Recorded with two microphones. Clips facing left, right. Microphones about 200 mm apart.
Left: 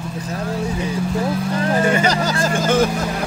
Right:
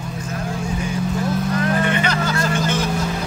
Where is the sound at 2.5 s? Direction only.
50° left (ahead or behind).